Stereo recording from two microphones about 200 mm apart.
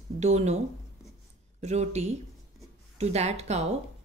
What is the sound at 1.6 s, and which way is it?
Speech, 35° right (ahead or behind).